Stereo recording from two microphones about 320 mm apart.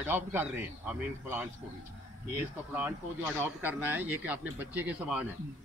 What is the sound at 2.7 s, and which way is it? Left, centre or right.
Speech, centre.